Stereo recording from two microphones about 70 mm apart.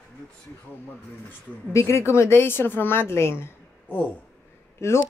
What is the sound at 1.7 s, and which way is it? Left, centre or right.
Speech, left.